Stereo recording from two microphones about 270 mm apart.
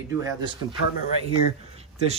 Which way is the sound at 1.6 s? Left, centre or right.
Right.